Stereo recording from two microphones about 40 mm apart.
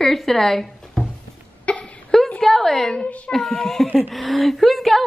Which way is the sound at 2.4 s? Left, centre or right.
Centre.